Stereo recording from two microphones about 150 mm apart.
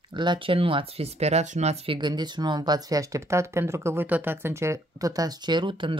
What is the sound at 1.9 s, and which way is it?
Speech, 30° right (ahead or behind).